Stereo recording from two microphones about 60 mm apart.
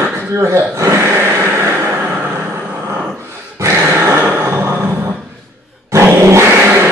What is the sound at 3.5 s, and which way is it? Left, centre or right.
Dog, right.